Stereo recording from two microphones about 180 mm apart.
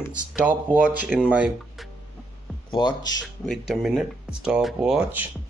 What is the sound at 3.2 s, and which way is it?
Speech, centre (ahead or behind).